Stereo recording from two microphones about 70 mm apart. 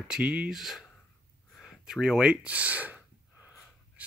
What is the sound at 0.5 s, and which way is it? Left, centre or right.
Speech, centre.